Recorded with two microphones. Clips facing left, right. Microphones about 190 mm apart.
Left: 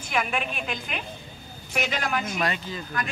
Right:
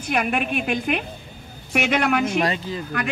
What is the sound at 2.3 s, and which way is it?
Speech, 30° right (ahead or behind).